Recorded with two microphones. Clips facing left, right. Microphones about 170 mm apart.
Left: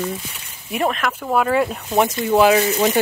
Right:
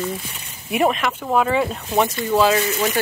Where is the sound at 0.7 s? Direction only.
5° right (ahead or behind).